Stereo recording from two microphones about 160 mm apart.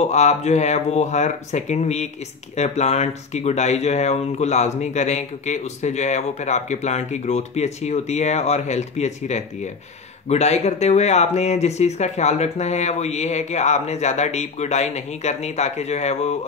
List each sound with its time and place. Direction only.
0.0 s speech: 45° left (ahead or behind)